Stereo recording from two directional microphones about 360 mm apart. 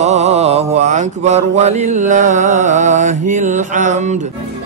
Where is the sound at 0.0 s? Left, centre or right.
Centre.